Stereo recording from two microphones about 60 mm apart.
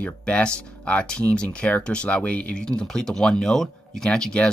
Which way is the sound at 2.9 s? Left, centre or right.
Centre.